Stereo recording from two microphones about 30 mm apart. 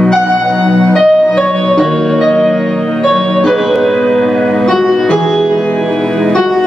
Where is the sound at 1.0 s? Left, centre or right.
Centre.